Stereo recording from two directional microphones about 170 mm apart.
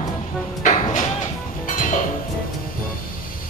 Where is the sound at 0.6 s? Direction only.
45° left (ahead or behind).